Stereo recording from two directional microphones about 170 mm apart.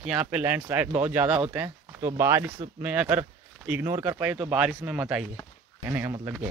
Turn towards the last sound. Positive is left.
turn(degrees=-10)  # may be behind; listen again after turning